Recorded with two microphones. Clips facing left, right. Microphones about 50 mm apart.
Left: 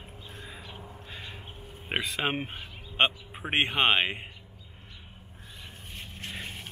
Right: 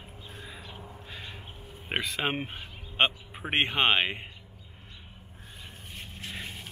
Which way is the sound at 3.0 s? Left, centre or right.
Centre.